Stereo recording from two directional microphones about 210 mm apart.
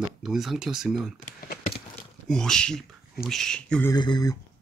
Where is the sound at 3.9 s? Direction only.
20° left (ahead or behind).